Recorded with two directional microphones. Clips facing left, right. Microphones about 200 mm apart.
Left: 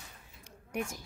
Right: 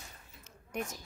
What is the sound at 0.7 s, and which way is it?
Speech, 10° left (ahead or behind).